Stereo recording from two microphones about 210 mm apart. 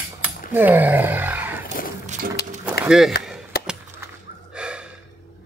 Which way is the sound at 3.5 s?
50° left (ahead or behind).